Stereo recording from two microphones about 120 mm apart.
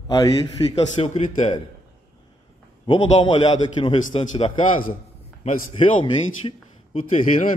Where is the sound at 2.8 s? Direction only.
45° left (ahead or behind).